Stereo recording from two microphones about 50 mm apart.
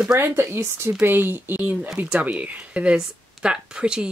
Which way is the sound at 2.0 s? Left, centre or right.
Right.